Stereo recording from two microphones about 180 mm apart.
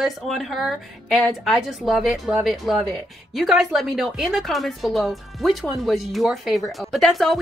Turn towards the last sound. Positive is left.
turn(degrees=0)  # may be behind; listen again after turning